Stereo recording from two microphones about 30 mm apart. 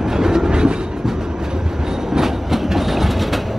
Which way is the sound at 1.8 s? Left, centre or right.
Centre.